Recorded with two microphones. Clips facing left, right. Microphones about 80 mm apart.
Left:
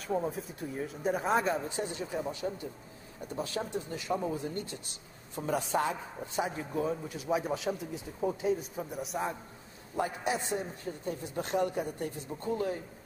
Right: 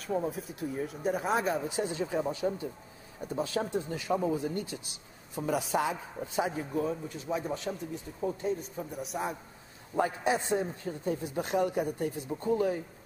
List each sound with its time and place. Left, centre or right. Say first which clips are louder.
0.0 s speech: even; centre
1.9 s speech: right 4 dB; right
5.4 s speech: right 1 dB; centre
6.7 s speech: right 1 dB; centre
9.9 s speech: right 4 dB; right